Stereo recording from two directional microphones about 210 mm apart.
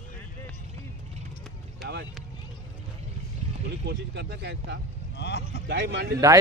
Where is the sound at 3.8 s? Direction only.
55° right (ahead or behind).